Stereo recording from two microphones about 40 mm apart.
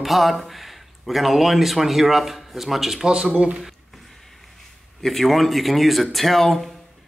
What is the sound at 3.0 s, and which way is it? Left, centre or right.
Speech, centre.